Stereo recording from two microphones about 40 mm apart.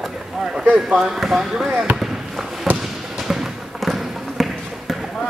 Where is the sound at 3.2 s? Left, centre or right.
Centre.